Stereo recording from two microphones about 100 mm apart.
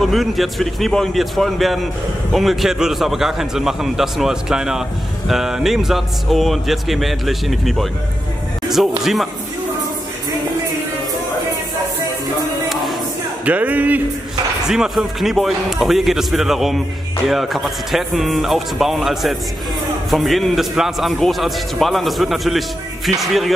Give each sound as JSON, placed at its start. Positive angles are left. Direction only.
{"t": 0.0, "sound": "a man's voice", "side_deg": 0}
{"t": 13.5, "sound": "speech", "side_deg": -15}
{"t": 14.7, "sound": "a man's voice", "side_deg": -5}